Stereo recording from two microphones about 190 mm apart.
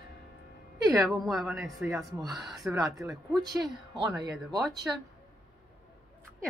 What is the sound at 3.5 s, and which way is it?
Speech, 25° right (ahead or behind).